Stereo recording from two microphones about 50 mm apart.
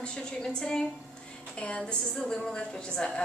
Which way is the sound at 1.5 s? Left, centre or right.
Left.